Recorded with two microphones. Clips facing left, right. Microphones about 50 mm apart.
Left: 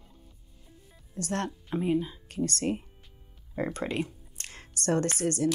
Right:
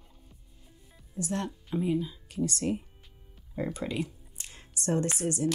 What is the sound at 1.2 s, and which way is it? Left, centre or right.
Speech, left.